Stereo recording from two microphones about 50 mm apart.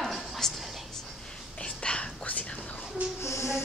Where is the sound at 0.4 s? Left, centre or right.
Centre.